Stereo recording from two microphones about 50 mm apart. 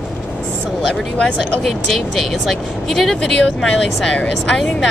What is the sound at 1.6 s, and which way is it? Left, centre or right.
Speech, centre.